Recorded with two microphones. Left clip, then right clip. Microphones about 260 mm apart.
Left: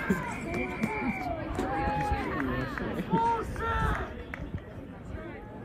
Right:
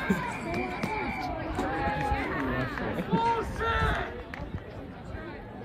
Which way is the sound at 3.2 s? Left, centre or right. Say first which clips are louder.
Even; left.